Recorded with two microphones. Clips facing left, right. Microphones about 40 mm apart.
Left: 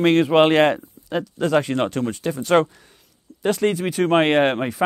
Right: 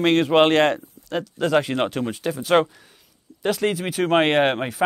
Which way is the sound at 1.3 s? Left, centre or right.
Centre.